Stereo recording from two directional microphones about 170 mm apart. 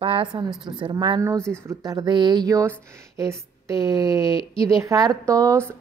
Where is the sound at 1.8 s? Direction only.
25° right (ahead or behind).